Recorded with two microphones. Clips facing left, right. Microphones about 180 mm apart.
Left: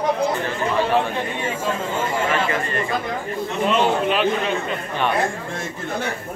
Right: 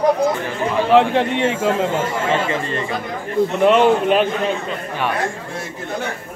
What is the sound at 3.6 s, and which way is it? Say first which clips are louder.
Speech: right 5 dB; 60° right (ahead or behind).